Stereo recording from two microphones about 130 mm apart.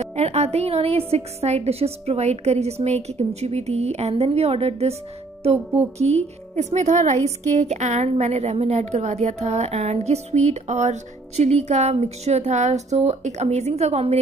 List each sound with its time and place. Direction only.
0.0 s a woman's voice: 55° right (ahead or behind)